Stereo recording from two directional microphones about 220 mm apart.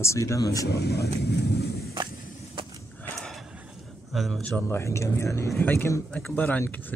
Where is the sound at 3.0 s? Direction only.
Centre (ahead or behind).